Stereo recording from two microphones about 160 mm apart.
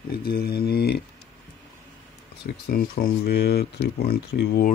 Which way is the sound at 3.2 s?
90° left.